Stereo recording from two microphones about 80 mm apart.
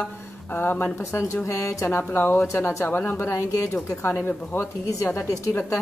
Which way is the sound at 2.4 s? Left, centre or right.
Left.